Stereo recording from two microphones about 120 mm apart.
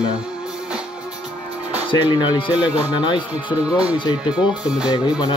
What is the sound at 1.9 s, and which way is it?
Speech, 40° left (ahead or behind).